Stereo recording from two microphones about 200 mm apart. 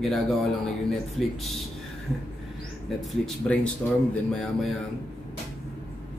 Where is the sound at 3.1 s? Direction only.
5° left (ahead or behind).